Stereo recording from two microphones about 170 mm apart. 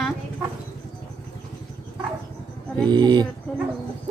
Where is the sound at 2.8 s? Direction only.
25° right (ahead or behind).